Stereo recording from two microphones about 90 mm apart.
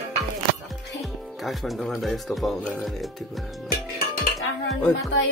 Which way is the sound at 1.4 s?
Centre (ahead or behind).